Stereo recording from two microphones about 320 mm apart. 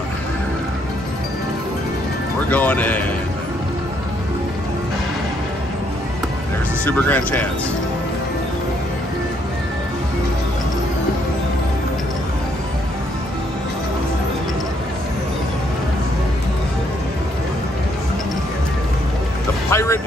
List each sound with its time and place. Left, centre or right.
2.5 s speech: centre
6.8 s speech: centre
19.7 s music: centre